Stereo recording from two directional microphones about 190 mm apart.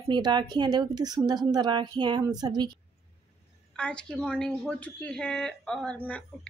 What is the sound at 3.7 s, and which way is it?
A woman's voice, 5° left (ahead or behind).